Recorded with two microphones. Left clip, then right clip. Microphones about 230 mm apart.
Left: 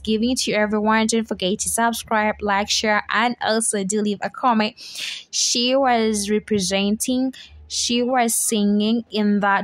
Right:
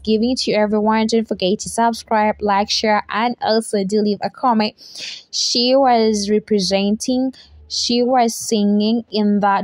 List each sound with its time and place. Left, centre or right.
0.0 s speech: centre